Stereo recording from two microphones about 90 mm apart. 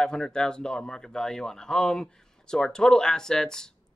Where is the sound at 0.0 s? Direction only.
10° left (ahead or behind).